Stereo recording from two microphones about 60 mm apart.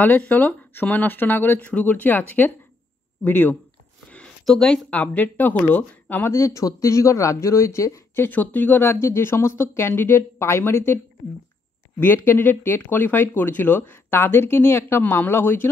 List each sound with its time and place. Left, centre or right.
0.2 s speech: left
1.7 s speech: left
4.5 s speech: centre
4.8 s speech: left
6.2 s a man's voice: left
8.1 s speech: left
12.0 s speech: left